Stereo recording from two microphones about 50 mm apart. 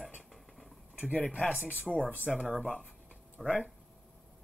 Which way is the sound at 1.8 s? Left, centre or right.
Centre.